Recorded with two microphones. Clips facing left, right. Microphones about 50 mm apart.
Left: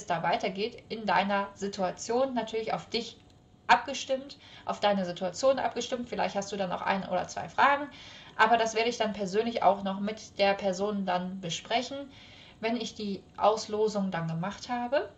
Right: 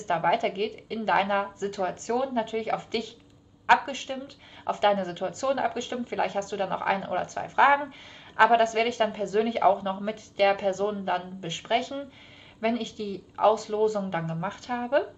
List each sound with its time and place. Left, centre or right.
0.0 s a woman's voice: right